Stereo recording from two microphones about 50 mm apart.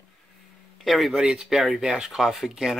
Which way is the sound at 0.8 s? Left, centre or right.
Centre.